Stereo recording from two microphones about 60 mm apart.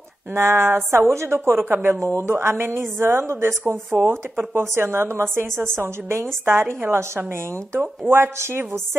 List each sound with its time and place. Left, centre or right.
0.3 s a woman's voice: right
2.0 s a woman's voice: right